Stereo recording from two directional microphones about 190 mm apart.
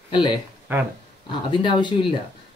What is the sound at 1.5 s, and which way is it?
Speech, 25° left (ahead or behind).